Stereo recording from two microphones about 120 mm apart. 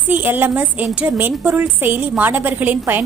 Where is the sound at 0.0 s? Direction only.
15° right (ahead or behind).